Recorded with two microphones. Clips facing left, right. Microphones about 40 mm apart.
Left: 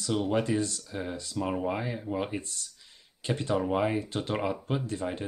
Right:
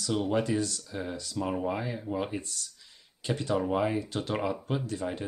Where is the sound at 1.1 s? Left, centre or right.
Left.